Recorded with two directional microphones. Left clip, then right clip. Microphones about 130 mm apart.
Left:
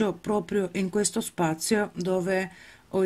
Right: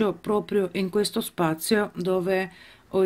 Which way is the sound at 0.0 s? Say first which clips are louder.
Right 2 dB; 20° left (ahead or behind).